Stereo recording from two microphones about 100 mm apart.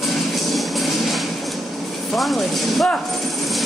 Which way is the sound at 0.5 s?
Centre (ahead or behind).